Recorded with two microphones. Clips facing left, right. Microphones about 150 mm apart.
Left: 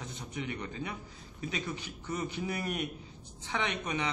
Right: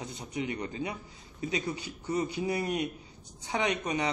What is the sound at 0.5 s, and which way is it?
Speech, 30° right (ahead or behind).